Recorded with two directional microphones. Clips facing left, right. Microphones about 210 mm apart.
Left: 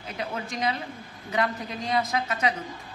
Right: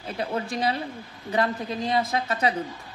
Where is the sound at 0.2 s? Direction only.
30° right (ahead or behind).